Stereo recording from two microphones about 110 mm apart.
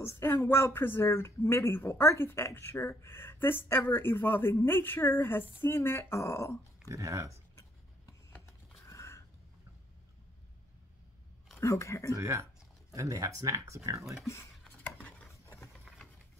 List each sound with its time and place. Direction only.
0.0 s speech: 25° left (ahead or behind)
6.9 s speech: 30° right (ahead or behind)
8.3 s a sound: 25° left (ahead or behind)
11.6 s speech: 25° left (ahead or behind)
12.2 s speech: 30° right (ahead or behind)
14.8 s chopping: 15° left (ahead or behind)
15.4 s vehicle: 25° left (ahead or behind)